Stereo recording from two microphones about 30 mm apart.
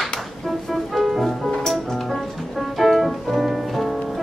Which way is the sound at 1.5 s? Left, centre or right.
Centre.